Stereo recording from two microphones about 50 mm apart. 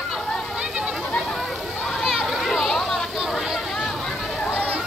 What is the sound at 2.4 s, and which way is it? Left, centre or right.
Children playing, centre.